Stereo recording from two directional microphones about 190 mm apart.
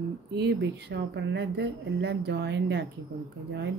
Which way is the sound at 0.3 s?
60° right (ahead or behind).